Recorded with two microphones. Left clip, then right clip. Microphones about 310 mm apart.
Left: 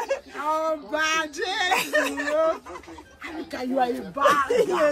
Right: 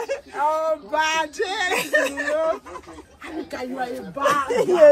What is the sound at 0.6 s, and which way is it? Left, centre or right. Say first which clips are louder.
Male singing: right 3 dB; centre.